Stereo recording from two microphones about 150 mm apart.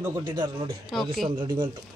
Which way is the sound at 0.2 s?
30° right (ahead or behind).